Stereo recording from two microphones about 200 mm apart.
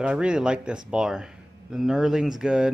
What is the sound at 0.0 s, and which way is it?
Speech, 5° right (ahead or behind).